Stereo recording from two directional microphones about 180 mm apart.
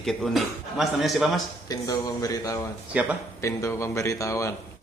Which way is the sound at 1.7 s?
20° left (ahead or behind).